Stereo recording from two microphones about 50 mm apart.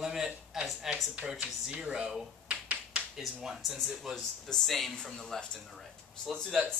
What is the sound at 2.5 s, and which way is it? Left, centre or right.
Finger snapping, right.